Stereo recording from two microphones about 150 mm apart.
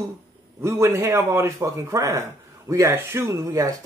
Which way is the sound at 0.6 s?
15° right (ahead or behind).